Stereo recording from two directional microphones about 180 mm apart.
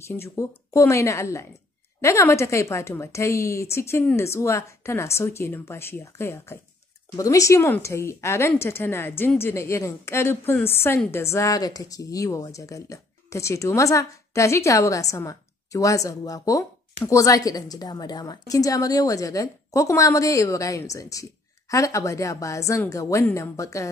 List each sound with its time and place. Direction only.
0.0 s a woman's voice: 15° left (ahead or behind)